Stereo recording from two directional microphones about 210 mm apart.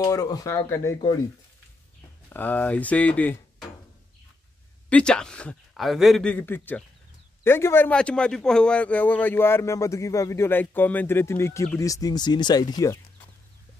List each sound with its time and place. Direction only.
0.0 s a man's voice: 15° left (ahead or behind)
2.2 s a man's voice: 10° left (ahead or behind)
4.8 s a man's voice: 5° left (ahead or behind)